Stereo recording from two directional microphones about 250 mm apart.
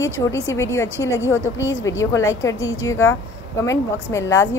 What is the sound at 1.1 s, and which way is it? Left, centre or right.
Speech, centre.